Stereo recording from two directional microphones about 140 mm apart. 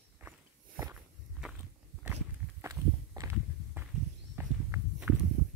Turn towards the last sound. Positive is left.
turn(degrees=-10)  # may be behind; listen again after turning